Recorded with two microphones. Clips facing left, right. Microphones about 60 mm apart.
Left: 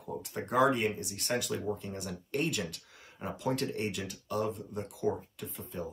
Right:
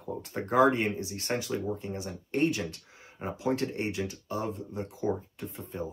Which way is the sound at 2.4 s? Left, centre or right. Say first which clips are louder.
Right 7 dB; right.